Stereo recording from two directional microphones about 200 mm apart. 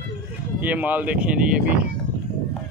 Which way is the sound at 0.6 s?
10° right (ahead or behind).